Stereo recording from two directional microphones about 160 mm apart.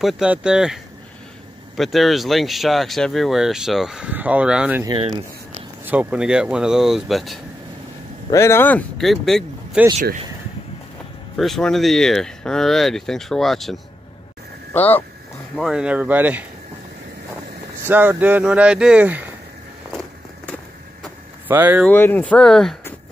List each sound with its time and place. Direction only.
0.0 s speech: 5° right (ahead or behind)
1.8 s speech: centre (ahead or behind)
4.8 s speech: 30° right (ahead or behind)
5.9 s speech: 10° right (ahead or behind)
8.3 s speech: 15° left (ahead or behind); by 9.8 s centre (ahead or behind)
11.3 s speech: centre (ahead or behind)
14.7 s speech: 10° left (ahead or behind)
15.5 s speech: centre (ahead or behind)
17.8 s speech: 10° right (ahead or behind)
21.5 s speech: 10° right (ahead or behind)
21.8 s speech: 10° left (ahead or behind)